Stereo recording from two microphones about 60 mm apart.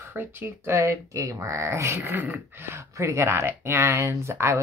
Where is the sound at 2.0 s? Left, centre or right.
Right.